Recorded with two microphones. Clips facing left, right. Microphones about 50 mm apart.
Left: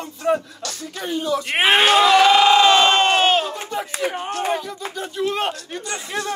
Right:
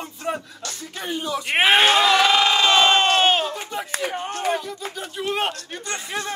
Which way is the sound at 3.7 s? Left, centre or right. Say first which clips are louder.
Left 3 dB; centre.